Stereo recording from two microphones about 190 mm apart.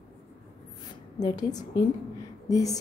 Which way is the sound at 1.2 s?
20° left (ahead or behind).